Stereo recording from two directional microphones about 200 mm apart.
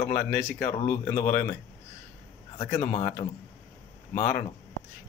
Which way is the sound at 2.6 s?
20° left (ahead or behind).